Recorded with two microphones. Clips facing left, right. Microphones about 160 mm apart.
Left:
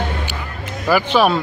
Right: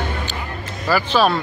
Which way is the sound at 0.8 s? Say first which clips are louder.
Left 2 dB; 15° left (ahead or behind).